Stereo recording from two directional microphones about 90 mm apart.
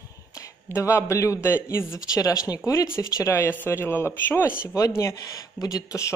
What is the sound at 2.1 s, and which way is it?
Speech, 40° left (ahead or behind).